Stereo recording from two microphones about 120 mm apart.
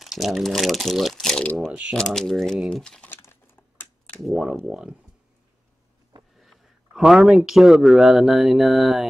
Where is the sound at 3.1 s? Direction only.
20° left (ahead or behind).